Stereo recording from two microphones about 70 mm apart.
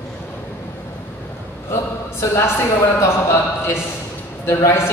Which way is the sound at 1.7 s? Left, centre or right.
Left.